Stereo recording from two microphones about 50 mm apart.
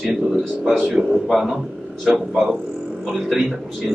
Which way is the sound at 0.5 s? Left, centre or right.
Centre.